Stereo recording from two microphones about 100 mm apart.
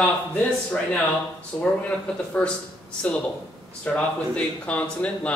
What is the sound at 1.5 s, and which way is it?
Speech, 20° left (ahead or behind).